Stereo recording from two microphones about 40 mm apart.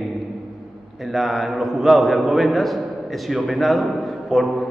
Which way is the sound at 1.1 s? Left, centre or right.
Centre.